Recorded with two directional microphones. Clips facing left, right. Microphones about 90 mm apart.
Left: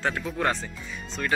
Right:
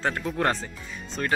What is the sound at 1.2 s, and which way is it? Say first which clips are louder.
Speech: right 1 dB; 45° right (ahead or behind).